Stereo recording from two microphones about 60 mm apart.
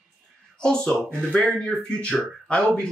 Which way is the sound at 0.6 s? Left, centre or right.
Centre.